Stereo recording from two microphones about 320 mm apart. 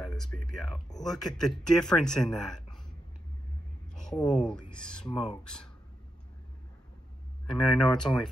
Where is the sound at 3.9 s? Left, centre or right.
Centre.